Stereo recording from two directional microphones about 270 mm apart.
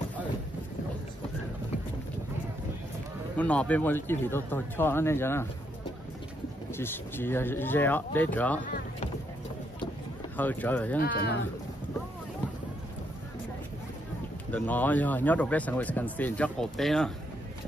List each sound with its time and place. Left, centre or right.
3.3 s speech: centre
6.8 s speech: centre
10.3 s speech: centre
11.0 s speech: left
14.5 s speech: centre